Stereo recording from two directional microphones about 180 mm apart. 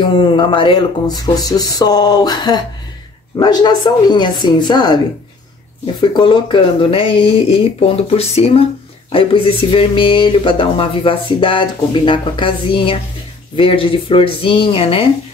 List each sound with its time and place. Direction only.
0.1 s speech: 25° left (ahead or behind)